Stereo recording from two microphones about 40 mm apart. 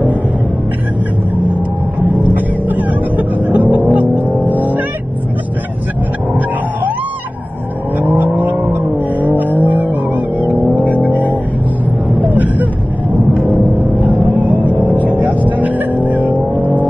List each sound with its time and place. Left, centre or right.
2.0 s music: right
8.0 s vehicle: right
9.3 s music: right
12.2 s vehicle: right
13.5 s music: right